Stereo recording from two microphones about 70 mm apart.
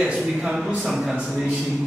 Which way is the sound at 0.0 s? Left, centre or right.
Centre.